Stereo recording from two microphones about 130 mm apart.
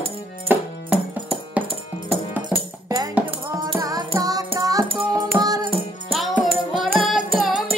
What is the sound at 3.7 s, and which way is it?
Music, 25° right (ahead or behind).